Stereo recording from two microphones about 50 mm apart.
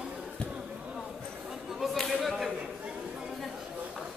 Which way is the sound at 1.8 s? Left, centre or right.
Centre.